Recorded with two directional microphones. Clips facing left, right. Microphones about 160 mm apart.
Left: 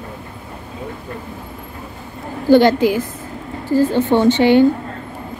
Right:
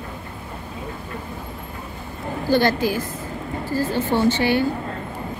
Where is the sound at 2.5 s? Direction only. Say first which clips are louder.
Left 8 dB; 15° left (ahead or behind).